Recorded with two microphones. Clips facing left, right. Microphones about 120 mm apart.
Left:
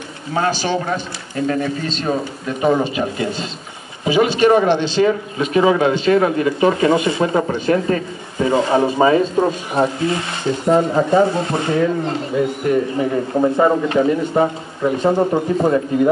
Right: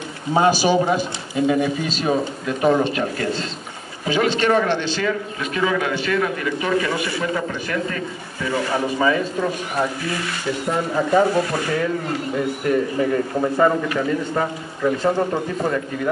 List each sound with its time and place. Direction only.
0.3 s speech: 15° right (ahead or behind); by 12.2 s 25° left (ahead or behind)
13.4 s speech: 20° left (ahead or behind)